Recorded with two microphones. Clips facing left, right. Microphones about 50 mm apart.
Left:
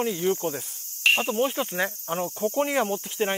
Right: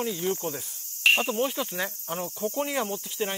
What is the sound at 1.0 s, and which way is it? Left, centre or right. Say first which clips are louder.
Cricket: left 1 dB; centre.